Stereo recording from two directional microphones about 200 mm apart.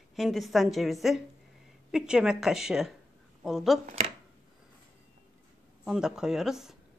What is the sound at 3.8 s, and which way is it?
Chopping, 30° right (ahead or behind).